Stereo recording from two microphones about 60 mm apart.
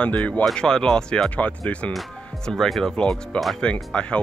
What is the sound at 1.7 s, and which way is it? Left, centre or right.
Speech, left.